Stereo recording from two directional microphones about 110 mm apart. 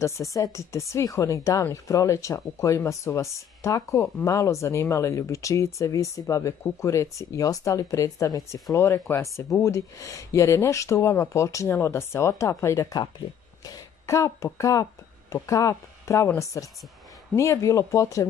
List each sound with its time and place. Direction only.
0.0 s speech: 30° left (ahead or behind)